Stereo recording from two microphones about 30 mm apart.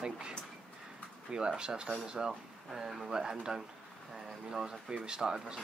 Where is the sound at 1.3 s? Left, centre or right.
Right.